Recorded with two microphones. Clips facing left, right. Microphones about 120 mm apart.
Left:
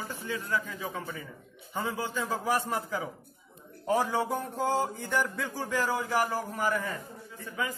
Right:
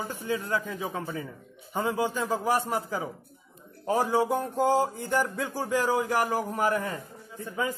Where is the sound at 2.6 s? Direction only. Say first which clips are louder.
Right 2 dB; 40° right (ahead or behind).